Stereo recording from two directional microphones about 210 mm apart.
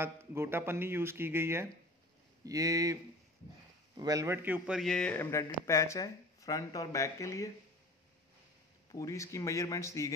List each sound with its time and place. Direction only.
0.0 s a man's voice: 10° right (ahead or behind); by 7.5 s 15° left (ahead or behind)
8.9 s a man's voice: 15° left (ahead or behind)